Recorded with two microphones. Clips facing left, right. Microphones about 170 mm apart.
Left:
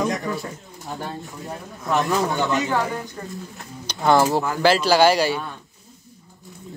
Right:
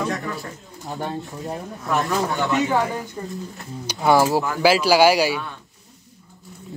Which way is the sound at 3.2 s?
15° right (ahead or behind).